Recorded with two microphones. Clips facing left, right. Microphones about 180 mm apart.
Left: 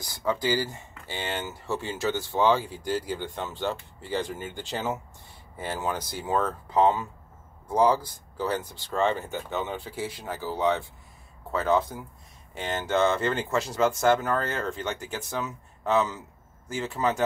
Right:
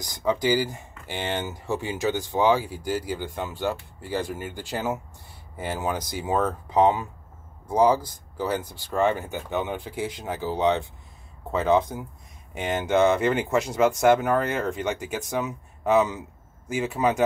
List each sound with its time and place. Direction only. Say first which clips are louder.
0.0 s speech: right 3 dB; 15° right (ahead or behind)